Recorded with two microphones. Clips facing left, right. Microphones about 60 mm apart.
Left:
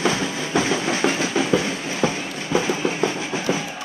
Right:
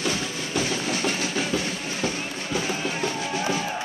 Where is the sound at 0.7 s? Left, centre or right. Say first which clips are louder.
Left 5 dB; left.